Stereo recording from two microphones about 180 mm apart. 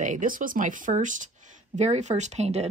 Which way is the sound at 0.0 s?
45° right (ahead or behind).